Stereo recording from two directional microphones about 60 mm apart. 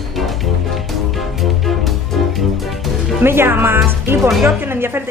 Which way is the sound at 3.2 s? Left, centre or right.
Right.